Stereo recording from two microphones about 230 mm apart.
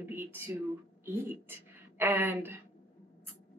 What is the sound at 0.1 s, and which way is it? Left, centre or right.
A woman's voice, centre.